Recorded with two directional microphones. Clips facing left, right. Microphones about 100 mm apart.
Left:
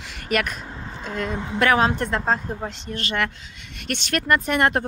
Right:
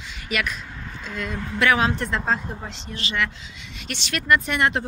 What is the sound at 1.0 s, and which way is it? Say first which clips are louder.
Speech: left 3 dB; 35° left (ahead or behind).